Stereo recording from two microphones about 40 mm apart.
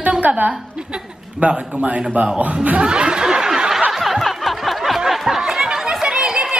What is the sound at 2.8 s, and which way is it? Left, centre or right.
Snicker, right.